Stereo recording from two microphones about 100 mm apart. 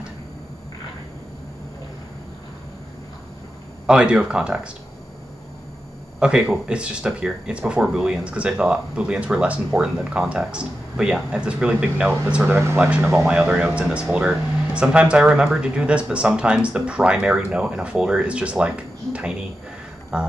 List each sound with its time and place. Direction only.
3.8 s speech: 10° right (ahead or behind)
6.1 s speech: 10° right (ahead or behind)